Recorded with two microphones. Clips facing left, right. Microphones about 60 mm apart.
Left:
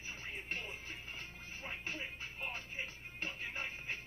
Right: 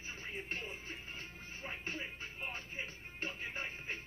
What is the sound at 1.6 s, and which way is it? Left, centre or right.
Speech, centre.